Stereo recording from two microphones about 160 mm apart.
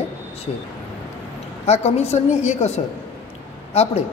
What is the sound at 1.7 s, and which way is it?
A woman's voice, 40° left (ahead or behind).